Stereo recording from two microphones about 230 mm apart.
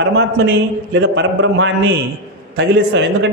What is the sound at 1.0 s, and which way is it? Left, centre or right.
A man's voice, right.